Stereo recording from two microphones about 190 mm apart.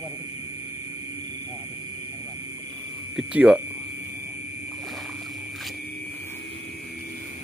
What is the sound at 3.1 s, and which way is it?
Speech, 5° right (ahead or behind).